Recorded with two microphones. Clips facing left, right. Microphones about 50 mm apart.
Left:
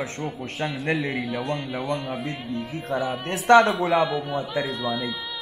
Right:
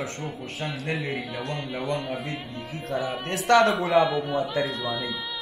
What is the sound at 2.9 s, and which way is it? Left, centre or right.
Speech, centre.